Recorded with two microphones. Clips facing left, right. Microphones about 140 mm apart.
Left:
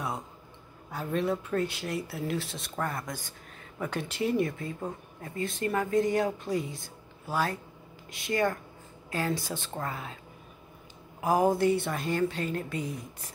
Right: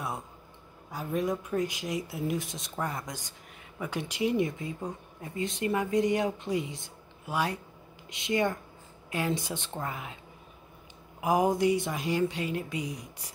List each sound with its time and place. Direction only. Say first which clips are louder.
0.9 s speech: left 1 dB; 10° right (ahead or behind)
11.1 s speech: left 1 dB; 15° right (ahead or behind)